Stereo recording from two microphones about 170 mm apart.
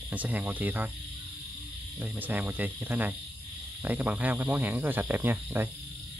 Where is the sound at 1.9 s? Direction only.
10° right (ahead or behind).